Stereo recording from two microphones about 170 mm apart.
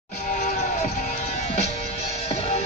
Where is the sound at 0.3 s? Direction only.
50° left (ahead or behind).